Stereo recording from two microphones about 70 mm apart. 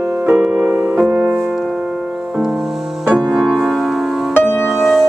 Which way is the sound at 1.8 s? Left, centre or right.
Centre.